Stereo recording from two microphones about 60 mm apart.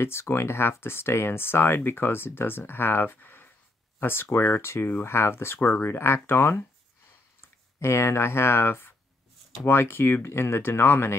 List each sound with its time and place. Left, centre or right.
0.0 s speech: left
7.8 s speech: left